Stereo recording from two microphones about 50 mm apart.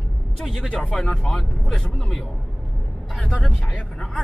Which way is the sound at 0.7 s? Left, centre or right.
Left.